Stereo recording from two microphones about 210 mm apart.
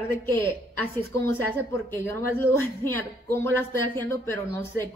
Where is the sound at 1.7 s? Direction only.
10° left (ahead or behind).